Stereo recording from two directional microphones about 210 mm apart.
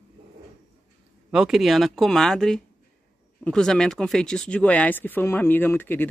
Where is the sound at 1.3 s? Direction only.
Centre (ahead or behind).